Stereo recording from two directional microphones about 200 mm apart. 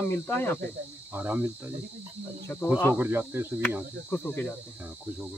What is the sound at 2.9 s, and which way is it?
Speech, 10° right (ahead or behind).